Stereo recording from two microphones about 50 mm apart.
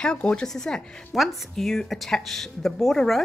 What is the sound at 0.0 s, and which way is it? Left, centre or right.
Speech, centre.